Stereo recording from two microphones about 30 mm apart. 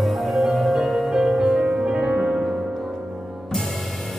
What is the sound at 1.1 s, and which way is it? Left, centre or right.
Music, right.